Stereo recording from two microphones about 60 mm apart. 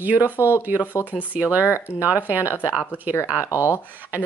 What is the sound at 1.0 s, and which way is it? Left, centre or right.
Speech, left.